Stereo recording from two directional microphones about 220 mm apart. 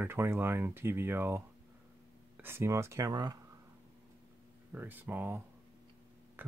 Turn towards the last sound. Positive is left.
turn(degrees=-10)  # may be behind; listen again after turning